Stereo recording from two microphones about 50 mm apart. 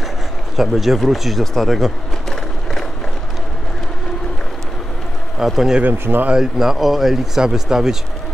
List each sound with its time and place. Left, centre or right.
0.6 s speech: centre
5.4 s speech: centre
5.9 s speech: right
6.3 s speech: centre